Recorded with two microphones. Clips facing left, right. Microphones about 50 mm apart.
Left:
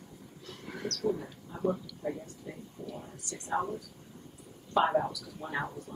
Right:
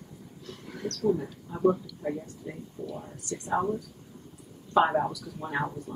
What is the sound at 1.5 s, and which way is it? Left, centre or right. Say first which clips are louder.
Speech: right 7 dB; right.